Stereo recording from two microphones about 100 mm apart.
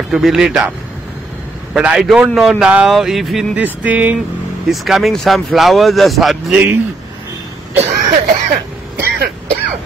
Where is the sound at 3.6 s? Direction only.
15° right (ahead or behind).